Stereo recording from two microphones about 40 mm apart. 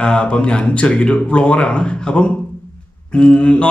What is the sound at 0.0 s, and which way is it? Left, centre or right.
Speech, left.